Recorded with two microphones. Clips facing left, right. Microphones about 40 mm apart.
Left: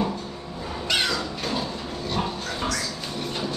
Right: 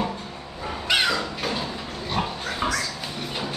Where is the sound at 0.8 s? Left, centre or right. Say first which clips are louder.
Right 3 dB; centre.